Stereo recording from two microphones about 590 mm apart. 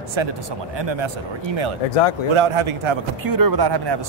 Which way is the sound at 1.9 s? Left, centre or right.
Left.